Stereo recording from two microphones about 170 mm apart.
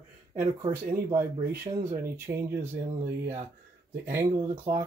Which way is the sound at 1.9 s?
15° right (ahead or behind).